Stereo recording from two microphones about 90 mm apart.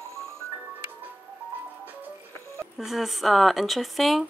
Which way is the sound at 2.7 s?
Centre (ahead or behind).